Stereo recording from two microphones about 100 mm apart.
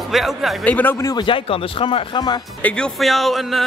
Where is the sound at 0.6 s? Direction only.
15° left (ahead or behind).